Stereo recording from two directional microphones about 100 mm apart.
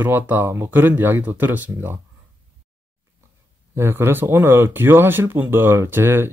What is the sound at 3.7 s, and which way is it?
A man's voice, 25° right (ahead or behind).